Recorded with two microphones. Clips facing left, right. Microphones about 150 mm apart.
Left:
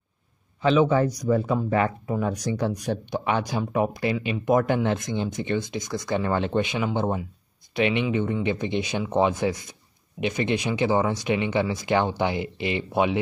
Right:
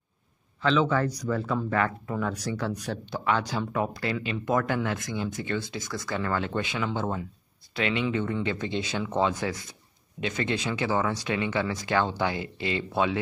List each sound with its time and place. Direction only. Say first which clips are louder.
0.6 s speech: left 4 dB; 15° left (ahead or behind)